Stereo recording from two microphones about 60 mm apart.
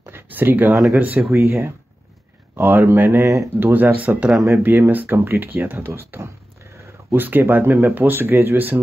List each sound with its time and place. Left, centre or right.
0.0 s a sound: right
0.9 s speech: right
1.3 s speech: right
7.1 s speech: right